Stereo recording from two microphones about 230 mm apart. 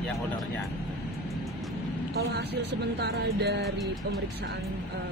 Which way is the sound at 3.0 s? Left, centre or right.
Right.